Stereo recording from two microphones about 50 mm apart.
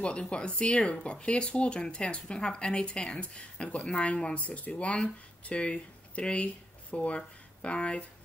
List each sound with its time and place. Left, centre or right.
0.0 s speech: left